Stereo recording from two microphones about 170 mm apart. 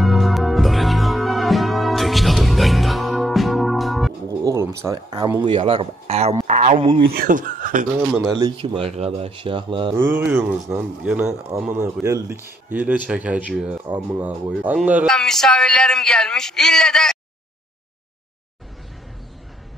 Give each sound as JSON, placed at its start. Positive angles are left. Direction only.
{"t": 0.0, "sound": "music", "side_deg": 0}
{"t": 4.5, "sound": "speech", "side_deg": -15}
{"t": 6.4, "sound": "a sound", "side_deg": -45}
{"t": 7.1, "sound": "speech", "side_deg": -55}
{"t": 8.1, "sound": "speech", "side_deg": 0}
{"t": 8.4, "sound": "speech", "side_deg": -30}
{"t": 9.9, "sound": "speech", "side_deg": -15}
{"t": 15.0, "sound": "speech", "side_deg": 5}